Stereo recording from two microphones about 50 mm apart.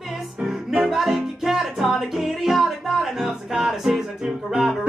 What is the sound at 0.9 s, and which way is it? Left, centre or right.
Music, centre.